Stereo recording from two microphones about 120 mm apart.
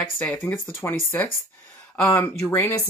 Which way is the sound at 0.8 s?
20° left (ahead or behind).